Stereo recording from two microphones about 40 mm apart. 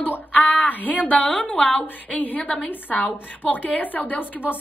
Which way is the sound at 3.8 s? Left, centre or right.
Left.